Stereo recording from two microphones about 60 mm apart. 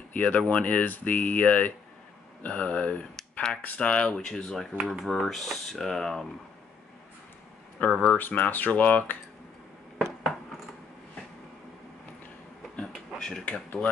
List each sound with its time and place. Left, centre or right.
0.1 s speech: left
5.0 s speech: centre
7.8 s speech: left
12.7 s a sound: centre
13.5 s speech: left